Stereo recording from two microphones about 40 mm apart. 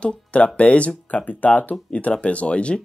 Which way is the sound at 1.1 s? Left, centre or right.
Left.